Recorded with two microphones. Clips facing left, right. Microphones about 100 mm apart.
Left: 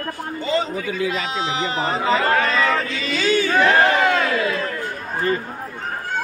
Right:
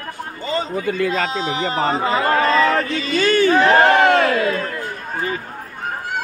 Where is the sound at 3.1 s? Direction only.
50° right (ahead or behind).